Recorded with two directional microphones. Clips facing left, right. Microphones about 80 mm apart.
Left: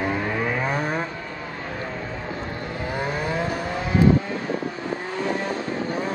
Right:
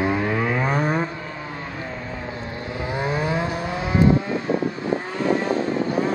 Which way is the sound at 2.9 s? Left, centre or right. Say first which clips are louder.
Right 3 dB; centre.